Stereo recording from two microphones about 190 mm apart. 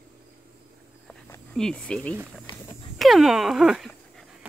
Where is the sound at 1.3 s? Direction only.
5° left (ahead or behind).